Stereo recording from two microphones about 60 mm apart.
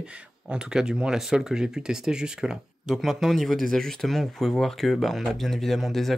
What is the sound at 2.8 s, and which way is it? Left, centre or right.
Speech, centre.